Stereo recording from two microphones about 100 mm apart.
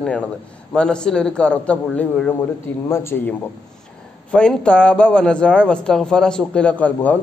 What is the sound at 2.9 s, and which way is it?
Speech, 20° left (ahead or behind).